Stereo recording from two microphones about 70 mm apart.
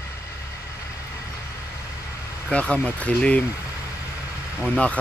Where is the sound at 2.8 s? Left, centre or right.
Centre.